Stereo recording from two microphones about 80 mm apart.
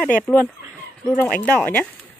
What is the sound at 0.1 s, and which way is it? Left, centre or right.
Speech, left.